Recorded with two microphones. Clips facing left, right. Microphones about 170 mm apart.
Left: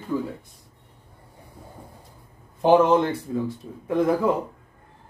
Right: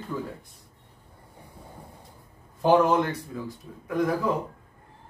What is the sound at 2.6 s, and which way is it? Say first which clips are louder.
Speech: left 3 dB; 25° left (ahead or behind).